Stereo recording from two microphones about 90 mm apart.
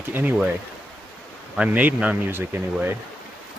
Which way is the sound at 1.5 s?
15° right (ahead or behind).